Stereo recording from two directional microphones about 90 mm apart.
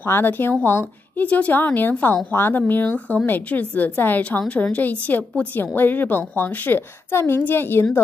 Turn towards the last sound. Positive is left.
turn(degrees=25)  # may be behind; listen again after turning